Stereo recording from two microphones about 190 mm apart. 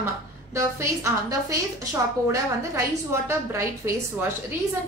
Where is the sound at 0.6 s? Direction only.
15° right (ahead or behind).